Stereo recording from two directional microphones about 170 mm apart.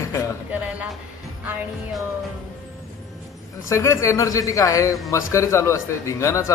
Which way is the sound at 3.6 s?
15° left (ahead or behind).